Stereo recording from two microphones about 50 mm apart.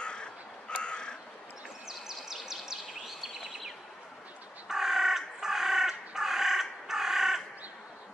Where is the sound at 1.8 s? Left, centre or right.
Centre.